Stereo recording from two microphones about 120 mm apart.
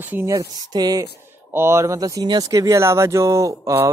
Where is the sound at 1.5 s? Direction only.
20° right (ahead or behind).